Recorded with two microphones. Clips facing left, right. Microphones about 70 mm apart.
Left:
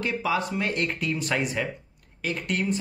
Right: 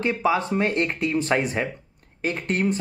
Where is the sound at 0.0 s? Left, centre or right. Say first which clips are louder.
Right 4 dB; right.